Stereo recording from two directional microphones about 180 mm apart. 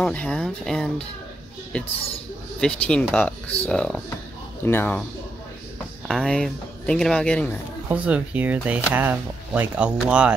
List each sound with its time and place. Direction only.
0.0 s speech: 5° left (ahead or behind)
2.6 s speech: 5° left (ahead or behind)
6.0 s speech: centre (ahead or behind)
7.9 s speech: 10° right (ahead or behind)